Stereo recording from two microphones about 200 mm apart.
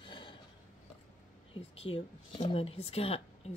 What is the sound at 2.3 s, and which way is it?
A woman's voice, 25° left (ahead or behind).